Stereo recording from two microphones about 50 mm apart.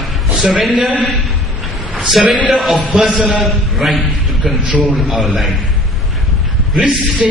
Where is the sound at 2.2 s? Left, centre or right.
Right.